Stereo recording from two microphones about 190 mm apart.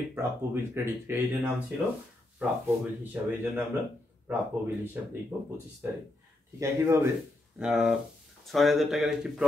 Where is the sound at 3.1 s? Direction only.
10° right (ahead or behind).